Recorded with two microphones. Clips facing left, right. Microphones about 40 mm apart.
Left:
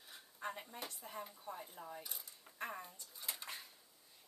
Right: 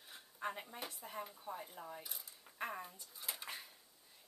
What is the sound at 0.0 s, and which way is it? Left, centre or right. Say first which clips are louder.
A woman's voice: right 2 dB; centre.